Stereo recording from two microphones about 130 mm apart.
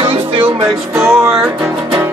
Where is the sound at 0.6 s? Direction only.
20° right (ahead or behind).